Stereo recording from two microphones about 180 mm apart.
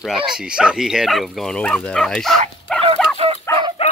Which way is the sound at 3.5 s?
15° left (ahead or behind).